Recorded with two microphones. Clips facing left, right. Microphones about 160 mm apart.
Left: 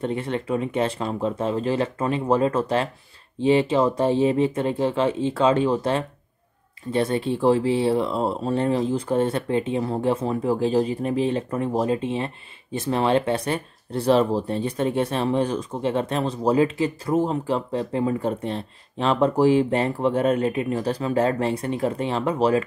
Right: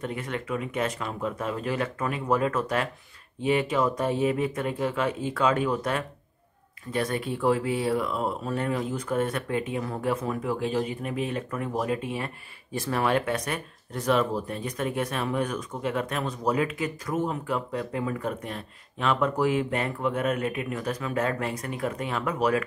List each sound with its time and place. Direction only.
0.0 s speech: 30° left (ahead or behind)